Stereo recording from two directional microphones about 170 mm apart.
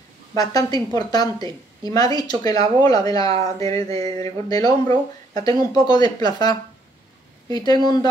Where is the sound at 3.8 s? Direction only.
35° right (ahead or behind).